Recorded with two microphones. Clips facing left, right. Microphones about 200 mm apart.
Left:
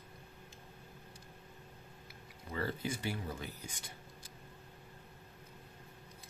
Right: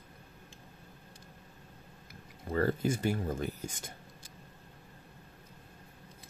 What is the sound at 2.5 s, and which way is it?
Speech, 45° right (ahead or behind).